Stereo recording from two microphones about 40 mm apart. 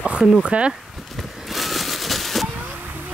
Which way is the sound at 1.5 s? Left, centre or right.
Centre.